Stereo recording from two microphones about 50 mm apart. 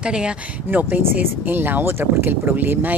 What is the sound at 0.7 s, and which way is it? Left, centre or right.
Speech, right.